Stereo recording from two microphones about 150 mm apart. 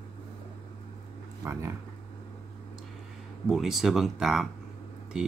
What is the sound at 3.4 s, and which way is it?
Speech, centre (ahead or behind).